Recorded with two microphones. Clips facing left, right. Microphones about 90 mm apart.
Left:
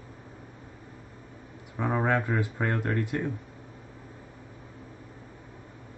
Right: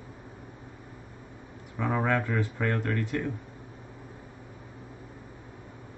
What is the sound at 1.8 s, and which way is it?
Speech, 15° left (ahead or behind).